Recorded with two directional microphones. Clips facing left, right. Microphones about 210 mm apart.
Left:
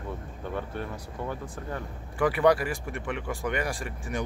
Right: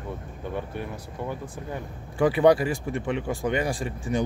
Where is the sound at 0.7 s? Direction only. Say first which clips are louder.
Right 1 dB; 10° right (ahead or behind).